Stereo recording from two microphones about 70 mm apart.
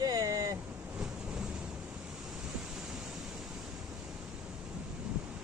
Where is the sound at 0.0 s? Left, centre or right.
Right.